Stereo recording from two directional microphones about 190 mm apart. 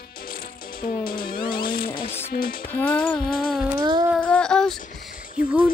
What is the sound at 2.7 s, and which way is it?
Music, 10° left (ahead or behind).